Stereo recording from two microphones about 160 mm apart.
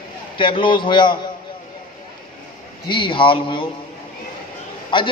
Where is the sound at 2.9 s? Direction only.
30° left (ahead or behind).